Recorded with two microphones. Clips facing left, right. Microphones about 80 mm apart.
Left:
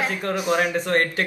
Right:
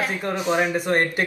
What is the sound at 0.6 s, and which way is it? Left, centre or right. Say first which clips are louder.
Speech: even; centre.